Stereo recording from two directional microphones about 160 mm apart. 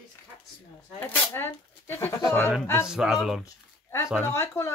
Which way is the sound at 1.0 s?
10° left (ahead or behind).